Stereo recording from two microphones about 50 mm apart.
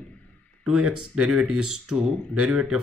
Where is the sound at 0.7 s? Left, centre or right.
Centre.